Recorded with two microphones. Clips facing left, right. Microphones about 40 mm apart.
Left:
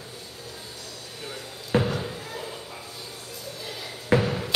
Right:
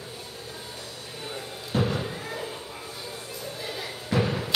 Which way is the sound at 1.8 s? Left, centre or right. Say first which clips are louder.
Left 1 dB; centre.